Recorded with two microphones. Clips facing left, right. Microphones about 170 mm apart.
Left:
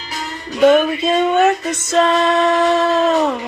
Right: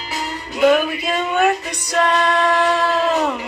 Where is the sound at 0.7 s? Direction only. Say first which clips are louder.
Left 4 dB; 25° left (ahead or behind).